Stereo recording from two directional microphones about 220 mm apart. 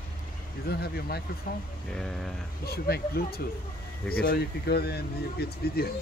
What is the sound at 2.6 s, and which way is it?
Speech, 45° left (ahead or behind).